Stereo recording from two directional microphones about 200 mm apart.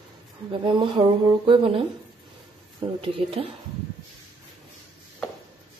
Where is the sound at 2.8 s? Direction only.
25° right (ahead or behind).